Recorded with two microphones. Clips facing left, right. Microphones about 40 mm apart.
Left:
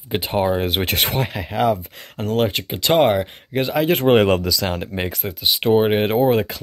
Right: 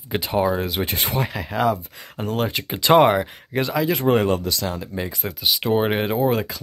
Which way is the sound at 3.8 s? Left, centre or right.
Left.